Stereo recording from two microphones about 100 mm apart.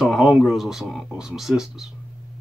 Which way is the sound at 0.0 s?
5° right (ahead or behind).